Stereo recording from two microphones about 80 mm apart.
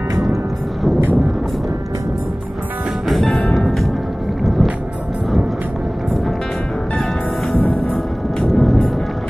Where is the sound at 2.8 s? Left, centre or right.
Centre.